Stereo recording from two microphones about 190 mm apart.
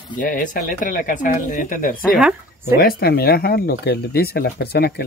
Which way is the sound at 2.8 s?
55° left (ahead or behind).